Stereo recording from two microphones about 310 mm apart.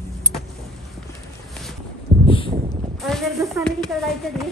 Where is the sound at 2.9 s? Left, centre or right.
Centre.